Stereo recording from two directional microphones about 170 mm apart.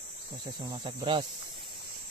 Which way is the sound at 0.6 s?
30° right (ahead or behind).